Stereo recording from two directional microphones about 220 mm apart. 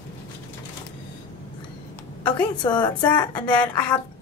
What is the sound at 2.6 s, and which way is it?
Speech, 20° left (ahead or behind).